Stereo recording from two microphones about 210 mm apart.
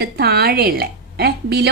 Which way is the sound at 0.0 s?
50° right (ahead or behind).